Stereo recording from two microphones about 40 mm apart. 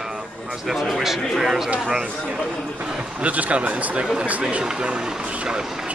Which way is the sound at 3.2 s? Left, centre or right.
Right.